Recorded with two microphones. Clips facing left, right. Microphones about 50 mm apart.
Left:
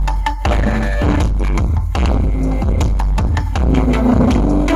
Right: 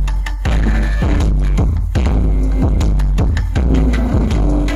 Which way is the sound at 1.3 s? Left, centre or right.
Left.